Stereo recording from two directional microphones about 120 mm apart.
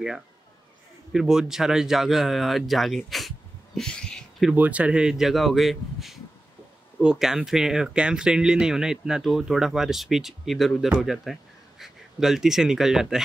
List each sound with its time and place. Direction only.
1.1 s speech: 5° right (ahead or behind)
3.0 s a sound: centre (ahead or behind)
4.5 s speech: 10° right (ahead or behind)